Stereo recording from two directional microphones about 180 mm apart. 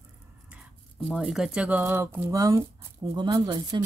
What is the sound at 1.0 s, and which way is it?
Speech, centre (ahead or behind).